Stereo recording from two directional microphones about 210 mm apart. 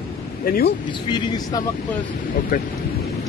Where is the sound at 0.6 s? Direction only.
20° left (ahead or behind).